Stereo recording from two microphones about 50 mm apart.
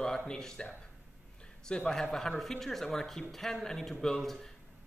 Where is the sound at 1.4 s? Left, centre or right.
Centre.